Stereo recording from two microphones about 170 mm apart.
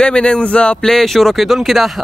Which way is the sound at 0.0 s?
5° left (ahead or behind).